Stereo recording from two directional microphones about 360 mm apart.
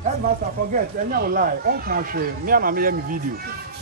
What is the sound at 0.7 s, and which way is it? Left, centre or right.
Speech, right.